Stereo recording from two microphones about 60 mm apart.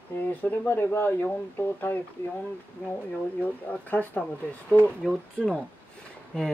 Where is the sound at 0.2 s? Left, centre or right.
Left.